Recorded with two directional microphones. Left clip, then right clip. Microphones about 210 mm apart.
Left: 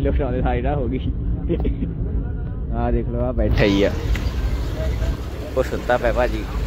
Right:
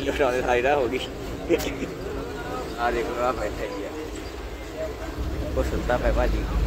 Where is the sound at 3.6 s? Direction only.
45° left (ahead or behind).